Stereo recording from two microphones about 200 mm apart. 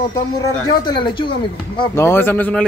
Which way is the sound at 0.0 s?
20° left (ahead or behind).